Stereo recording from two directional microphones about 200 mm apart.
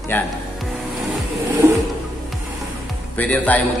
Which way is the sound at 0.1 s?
10° left (ahead or behind).